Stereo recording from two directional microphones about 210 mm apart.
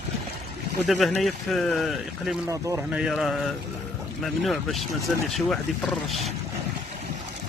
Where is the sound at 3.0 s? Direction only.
Centre (ahead or behind).